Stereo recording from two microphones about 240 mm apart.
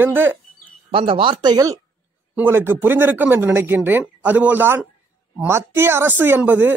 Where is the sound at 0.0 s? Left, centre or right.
Centre.